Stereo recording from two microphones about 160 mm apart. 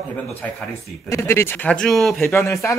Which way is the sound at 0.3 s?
10° left (ahead or behind).